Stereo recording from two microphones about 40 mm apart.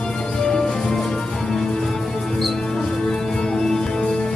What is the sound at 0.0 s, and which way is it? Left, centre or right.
Music, centre.